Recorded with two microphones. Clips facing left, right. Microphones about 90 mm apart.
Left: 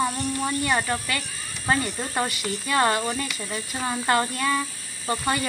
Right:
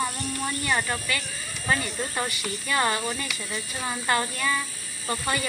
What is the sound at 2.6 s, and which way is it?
Speech, 40° left (ahead or behind).